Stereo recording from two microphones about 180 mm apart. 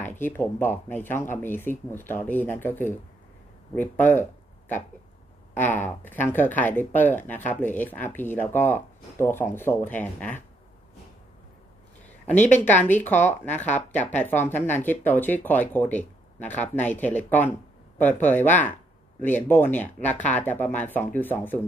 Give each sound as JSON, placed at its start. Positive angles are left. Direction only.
{"t": 0.0, "sound": "speech", "side_deg": 10}
{"t": 12.8, "sound": "speech", "side_deg": 10}
{"t": 13.5, "sound": "speech", "side_deg": 40}
{"t": 13.9, "sound": "speech", "side_deg": 10}